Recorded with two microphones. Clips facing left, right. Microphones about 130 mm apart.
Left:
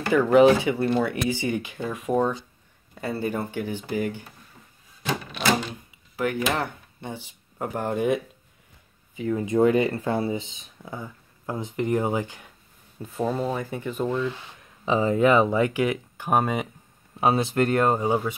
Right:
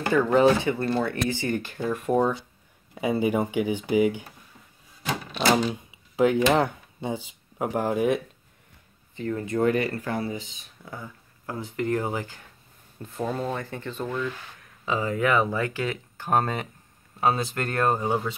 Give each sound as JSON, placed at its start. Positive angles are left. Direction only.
{"t": 0.1, "sound": "speech", "side_deg": 10}
{"t": 1.6, "sound": "speech", "side_deg": 0}
{"t": 2.9, "sound": "speech", "side_deg": -15}
{"t": 6.5, "sound": "speech", "side_deg": -15}
{"t": 9.1, "sound": "speech", "side_deg": 10}
{"t": 13.0, "sound": "speech", "side_deg": 5}
{"t": 14.0, "sound": "speech", "side_deg": 25}
{"t": 17.2, "sound": "speech", "side_deg": 25}
{"t": 18.0, "sound": "speech", "side_deg": 5}